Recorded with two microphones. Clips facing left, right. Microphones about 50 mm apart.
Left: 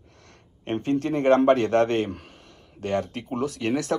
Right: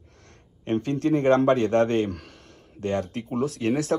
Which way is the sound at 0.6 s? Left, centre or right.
Left.